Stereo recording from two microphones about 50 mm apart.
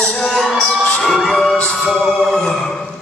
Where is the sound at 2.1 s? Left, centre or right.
Centre.